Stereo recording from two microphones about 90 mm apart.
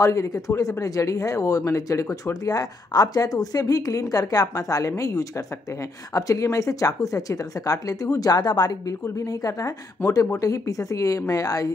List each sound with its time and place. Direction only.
0.0 s speech: 40° left (ahead or behind)